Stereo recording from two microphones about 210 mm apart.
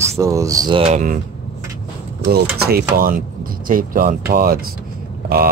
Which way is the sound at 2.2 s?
50° right (ahead or behind).